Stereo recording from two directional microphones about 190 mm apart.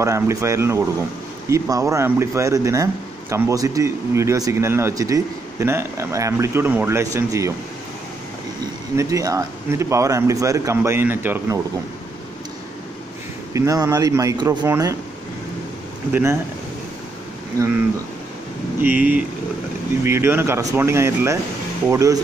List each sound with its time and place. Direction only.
0.0 s speech: 15° right (ahead or behind)
8.9 s speech: 20° right (ahead or behind)
13.5 s speech: 15° right (ahead or behind)
16.1 s speech: 10° right (ahead or behind)
18.8 s speech: 10° right (ahead or behind)